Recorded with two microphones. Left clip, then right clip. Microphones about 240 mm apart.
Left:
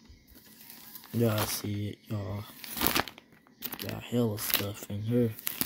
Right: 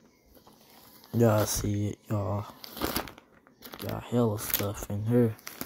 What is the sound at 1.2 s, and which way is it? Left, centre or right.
Speech, centre.